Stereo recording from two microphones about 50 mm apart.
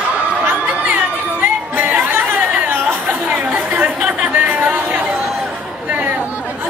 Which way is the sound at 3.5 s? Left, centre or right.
Right.